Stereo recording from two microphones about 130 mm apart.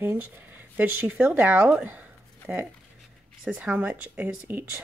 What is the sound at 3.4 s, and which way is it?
Speech, 10° right (ahead or behind).